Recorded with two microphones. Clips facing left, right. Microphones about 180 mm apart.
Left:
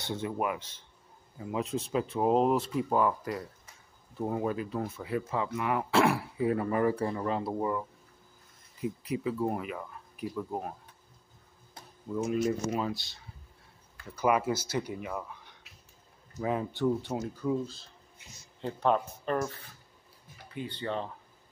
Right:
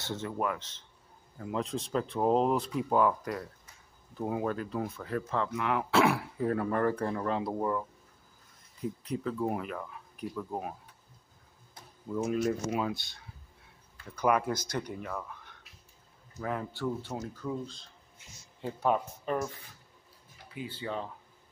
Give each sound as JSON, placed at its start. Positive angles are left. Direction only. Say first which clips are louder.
{"t": 0.0, "sound": "speech", "louder": "left 1 dB", "side_deg": 15}
{"t": 8.8, "sound": "speech", "louder": "left 2 dB", "side_deg": 10}
{"t": 12.2, "sound": "speech", "louder": "left 1 dB", "side_deg": 0}
{"t": 18.6, "sound": "speech", "louder": "left 1 dB", "side_deg": -5}